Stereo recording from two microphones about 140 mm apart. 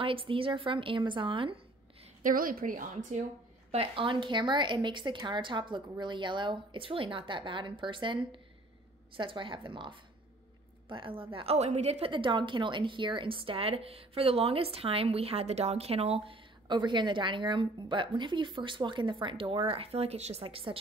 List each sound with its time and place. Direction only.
0.0 s a woman's voice: 40° right (ahead or behind)
2.2 s a woman's voice: 90° right; by 3.3 s 65° right (ahead or behind)
3.7 s a woman's voice: 40° right (ahead or behind)